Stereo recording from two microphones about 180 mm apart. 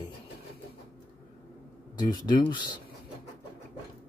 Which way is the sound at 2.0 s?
25° left (ahead or behind).